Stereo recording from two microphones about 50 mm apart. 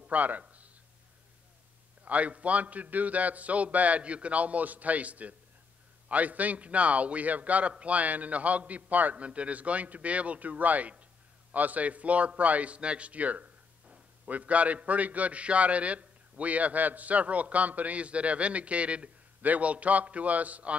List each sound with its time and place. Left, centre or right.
0.1 s a man's voice: right
2.0 s a man's voice: right